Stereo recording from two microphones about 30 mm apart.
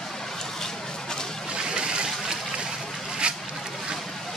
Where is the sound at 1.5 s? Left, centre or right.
Right.